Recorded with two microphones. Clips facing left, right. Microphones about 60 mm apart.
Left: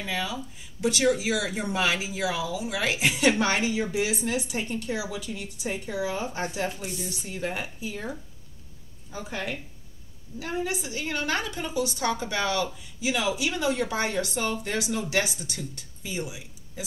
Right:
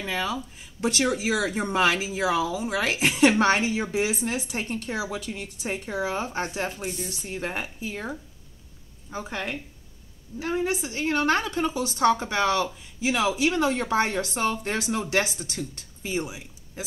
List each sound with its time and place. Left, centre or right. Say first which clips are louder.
0.0 s a woman's voice: right 2 dB; right
9.1 s a woman's voice: right 2 dB; right